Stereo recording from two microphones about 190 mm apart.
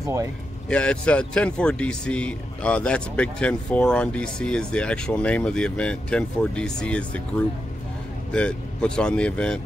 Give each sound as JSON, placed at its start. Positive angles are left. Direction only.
{"t": 0.0, "sound": "speech", "side_deg": -15}
{"t": 0.7, "sound": "speech", "side_deg": 5}